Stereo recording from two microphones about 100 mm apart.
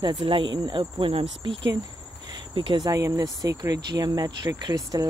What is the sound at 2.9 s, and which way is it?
Speech, 35° right (ahead or behind).